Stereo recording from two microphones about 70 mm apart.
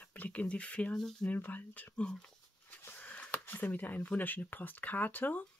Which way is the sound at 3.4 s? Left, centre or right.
Left.